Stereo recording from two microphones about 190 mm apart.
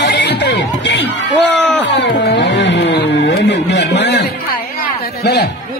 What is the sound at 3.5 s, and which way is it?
Speech, 65° left (ahead or behind).